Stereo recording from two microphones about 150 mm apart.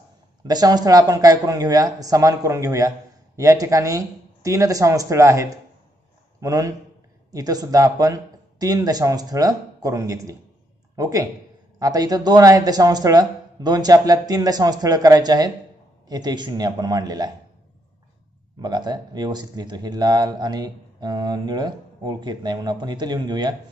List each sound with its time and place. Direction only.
0.5 s speech: 25° right (ahead or behind)
18.6 s speech: 30° right (ahead or behind)